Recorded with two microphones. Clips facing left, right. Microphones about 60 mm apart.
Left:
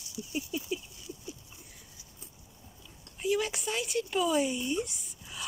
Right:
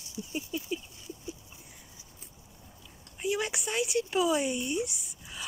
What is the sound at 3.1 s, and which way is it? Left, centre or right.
Speech, centre.